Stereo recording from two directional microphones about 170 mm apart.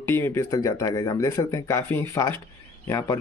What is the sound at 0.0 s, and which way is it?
Speech, 15° left (ahead or behind).